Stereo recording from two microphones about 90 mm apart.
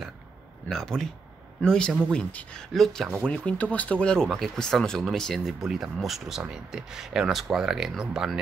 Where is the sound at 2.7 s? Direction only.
5° left (ahead or behind).